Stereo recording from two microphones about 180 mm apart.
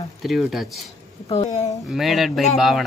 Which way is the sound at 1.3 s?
35° left (ahead or behind).